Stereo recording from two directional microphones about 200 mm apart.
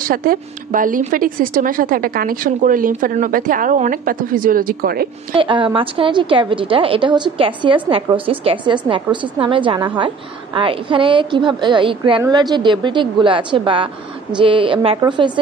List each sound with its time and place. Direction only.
0.0 s a woman's voice: 45° right (ahead or behind)
5.3 s a woman's voice: 25° right (ahead or behind)